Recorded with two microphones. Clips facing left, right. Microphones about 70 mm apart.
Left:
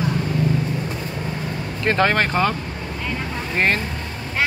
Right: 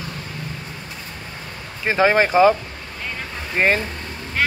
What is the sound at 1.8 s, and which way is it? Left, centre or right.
Speech, centre.